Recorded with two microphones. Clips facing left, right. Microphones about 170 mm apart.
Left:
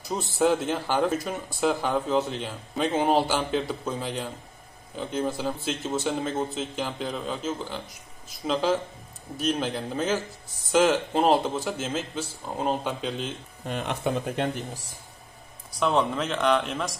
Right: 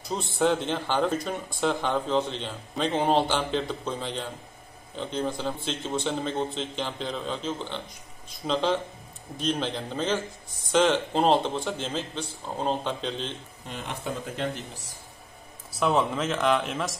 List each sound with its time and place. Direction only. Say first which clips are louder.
0.1 s a man's voice: left 1 dB; 5° left (ahead or behind)
13.7 s speech: left 6 dB; 65° left (ahead or behind)
15.7 s speech: even; centre (ahead or behind)